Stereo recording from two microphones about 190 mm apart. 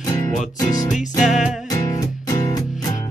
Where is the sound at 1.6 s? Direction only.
20° left (ahead or behind).